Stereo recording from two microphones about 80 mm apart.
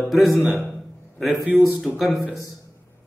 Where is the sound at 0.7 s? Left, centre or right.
Centre.